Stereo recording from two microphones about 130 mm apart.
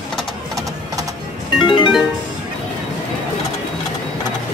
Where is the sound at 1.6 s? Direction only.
40° left (ahead or behind).